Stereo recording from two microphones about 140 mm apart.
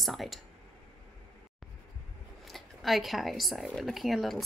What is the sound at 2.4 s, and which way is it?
A woman's voice, centre (ahead or behind).